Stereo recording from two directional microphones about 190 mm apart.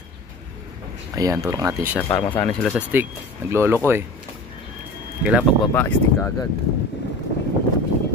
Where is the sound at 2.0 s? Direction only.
10° left (ahead or behind).